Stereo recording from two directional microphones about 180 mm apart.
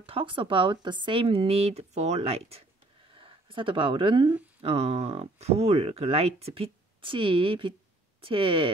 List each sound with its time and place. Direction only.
0.0 s speech: 30° right (ahead or behind)